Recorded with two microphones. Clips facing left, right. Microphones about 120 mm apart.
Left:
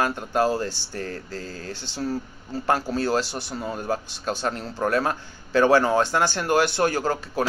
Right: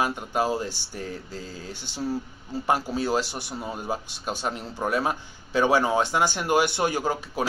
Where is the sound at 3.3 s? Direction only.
25° left (ahead or behind).